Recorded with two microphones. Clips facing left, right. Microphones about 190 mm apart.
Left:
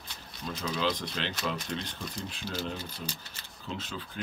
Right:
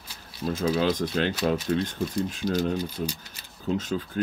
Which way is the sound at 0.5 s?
50° right (ahead or behind).